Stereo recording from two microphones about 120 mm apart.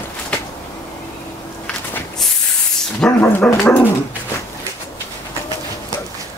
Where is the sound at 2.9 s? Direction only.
15° left (ahead or behind).